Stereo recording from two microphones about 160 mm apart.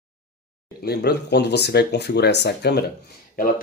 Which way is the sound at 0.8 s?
90° left.